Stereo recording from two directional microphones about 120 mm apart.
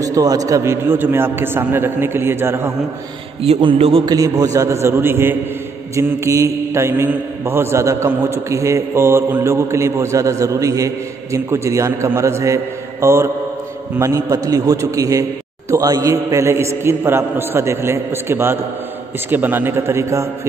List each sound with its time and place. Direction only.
0.0 s mantra: 30° right (ahead or behind)
3.4 s a man's voice: 55° right (ahead or behind)
4.0 s mantra: 30° right (ahead or behind)